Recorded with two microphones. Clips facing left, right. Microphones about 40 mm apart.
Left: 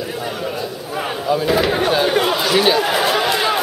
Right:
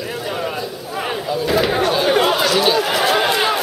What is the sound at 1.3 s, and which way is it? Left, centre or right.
Speech, centre.